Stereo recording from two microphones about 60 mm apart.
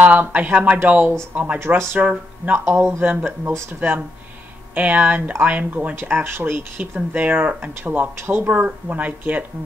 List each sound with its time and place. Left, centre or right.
0.0 s speech: right
0.8 s speech: right
1.3 s speech: right
1.6 s speech: right
2.0 s speech: right
2.5 s speech: right
4.7 s speech: right
5.9 s speech: right
6.8 s speech: right